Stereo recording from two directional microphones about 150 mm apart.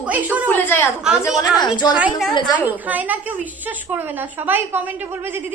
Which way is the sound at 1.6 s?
30° left (ahead or behind).